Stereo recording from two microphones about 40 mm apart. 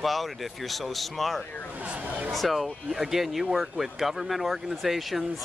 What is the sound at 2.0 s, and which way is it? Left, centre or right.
Speech, right.